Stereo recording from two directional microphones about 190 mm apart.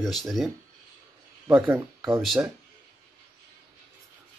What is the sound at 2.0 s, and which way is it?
Speech, 15° right (ahead or behind).